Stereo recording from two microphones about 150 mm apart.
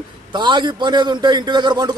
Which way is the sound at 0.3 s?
30° right (ahead or behind).